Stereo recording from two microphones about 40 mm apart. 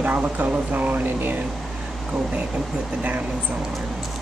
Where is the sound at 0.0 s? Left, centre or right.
Right.